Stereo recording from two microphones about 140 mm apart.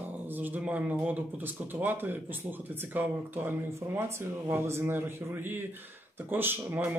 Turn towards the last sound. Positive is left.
turn(degrees=-15)  # may be behind; listen again after turning